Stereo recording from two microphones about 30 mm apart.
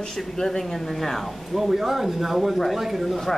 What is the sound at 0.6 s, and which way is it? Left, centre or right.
Speech, centre.